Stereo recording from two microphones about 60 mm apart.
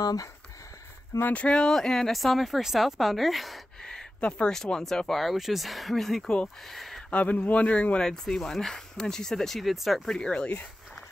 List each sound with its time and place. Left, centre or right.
0.0 s speech: left
1.2 s speech: left; by 3.6 s centre
3.8 s a sound: centre
4.5 s speech: centre
6.2 s speech: centre
6.7 s speech: centre
7.1 s speech: left; by 10.0 s centre
10.0 s speech: centre